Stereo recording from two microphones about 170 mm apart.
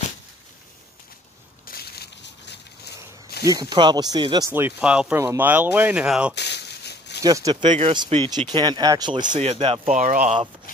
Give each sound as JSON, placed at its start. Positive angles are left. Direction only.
{"t": 1.7, "sound": "a sound", "side_deg": 65}
{"t": 3.3, "sound": "snake", "side_deg": 65}
{"t": 3.7, "sound": "speech", "side_deg": -25}
{"t": 4.5, "sound": "speech", "side_deg": -10}
{"t": 6.3, "sound": "a sound", "side_deg": 85}
{"t": 7.2, "sound": "speech", "side_deg": -20}
{"t": 9.4, "sound": "speech", "side_deg": -35}
{"t": 9.8, "sound": "speech", "side_deg": -50}